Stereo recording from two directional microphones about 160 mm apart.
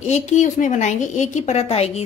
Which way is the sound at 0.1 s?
50° left (ahead or behind).